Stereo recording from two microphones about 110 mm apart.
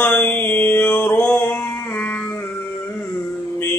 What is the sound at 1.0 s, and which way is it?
Music, 15° left (ahead or behind).